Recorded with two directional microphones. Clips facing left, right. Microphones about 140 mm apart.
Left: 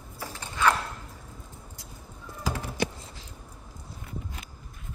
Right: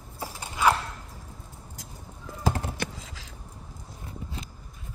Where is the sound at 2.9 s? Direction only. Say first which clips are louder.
Right 2 dB; 90° right.